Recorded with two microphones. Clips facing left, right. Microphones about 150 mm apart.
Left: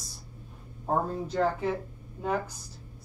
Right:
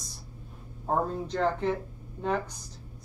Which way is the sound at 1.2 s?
5° left (ahead or behind).